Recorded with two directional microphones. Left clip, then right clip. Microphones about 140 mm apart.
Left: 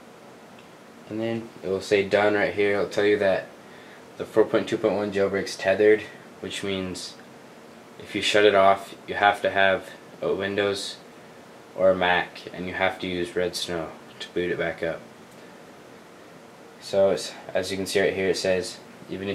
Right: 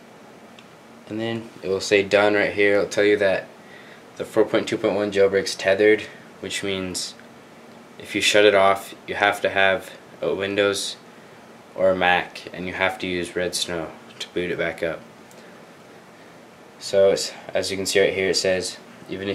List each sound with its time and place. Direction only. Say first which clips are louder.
1.1 s speech: right 1 dB; 40° right (ahead or behind)
8.1 s speech: right 3 dB; 40° right (ahead or behind)
11.8 s speech: right 2 dB; 40° right (ahead or behind)
16.9 s speech: right 4 dB; 40° right (ahead or behind)